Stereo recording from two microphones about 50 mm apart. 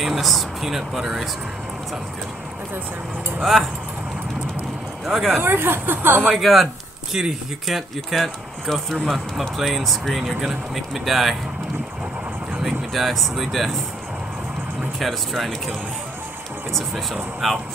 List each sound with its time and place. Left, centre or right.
0.0 s speech: centre
5.0 s speech: centre
5.4 s speech: right
6.3 s speech: centre
7.6 s speech: centre
12.6 s speech: centre
15.0 s speech: centre
16.7 s speech: centre